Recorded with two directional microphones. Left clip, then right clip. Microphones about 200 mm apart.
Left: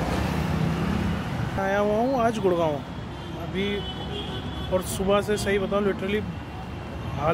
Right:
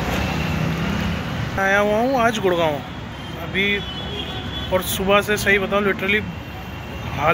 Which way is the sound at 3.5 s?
10° left (ahead or behind).